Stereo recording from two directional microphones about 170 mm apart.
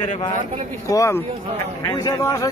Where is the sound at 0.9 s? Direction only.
20° left (ahead or behind).